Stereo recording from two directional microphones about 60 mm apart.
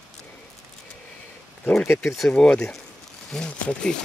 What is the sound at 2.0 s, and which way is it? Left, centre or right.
Speech, centre.